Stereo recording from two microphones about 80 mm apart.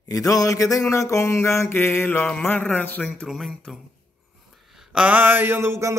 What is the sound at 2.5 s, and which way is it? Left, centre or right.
Music, left.